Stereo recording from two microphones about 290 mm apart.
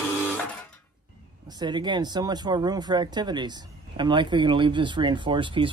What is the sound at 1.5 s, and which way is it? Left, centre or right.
Speech, centre.